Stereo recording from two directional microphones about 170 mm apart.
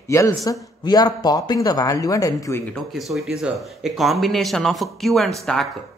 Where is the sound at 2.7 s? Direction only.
Centre (ahead or behind).